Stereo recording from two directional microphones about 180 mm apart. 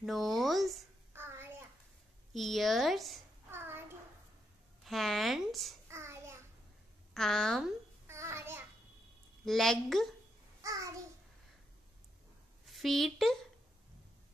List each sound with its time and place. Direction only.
0.0 s speech: centre (ahead or behind)
1.1 s child singing: 15° right (ahead or behind)
2.3 s speech: centre (ahead or behind)
3.4 s a sound: 10° right (ahead or behind)
4.8 s speech: centre (ahead or behind)
5.9 s child singing: 15° right (ahead or behind)
7.2 s speech: centre (ahead or behind)
8.1 s a sound: 15° right (ahead or behind)
9.4 s speech: centre (ahead or behind)
10.6 s a sound: 20° right (ahead or behind)
12.6 s a woman's voice: centre (ahead or behind)